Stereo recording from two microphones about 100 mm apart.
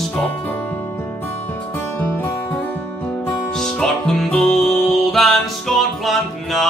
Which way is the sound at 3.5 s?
5° left (ahead or behind).